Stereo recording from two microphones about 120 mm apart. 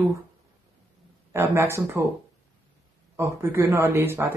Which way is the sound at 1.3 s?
20° right (ahead or behind).